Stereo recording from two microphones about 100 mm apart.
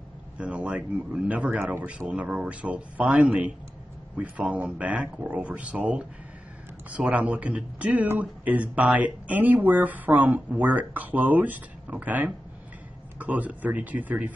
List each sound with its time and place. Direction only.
0.4 s speech: 10° right (ahead or behind)